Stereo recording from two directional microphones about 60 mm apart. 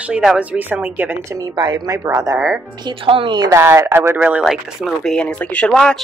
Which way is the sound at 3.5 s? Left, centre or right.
Right.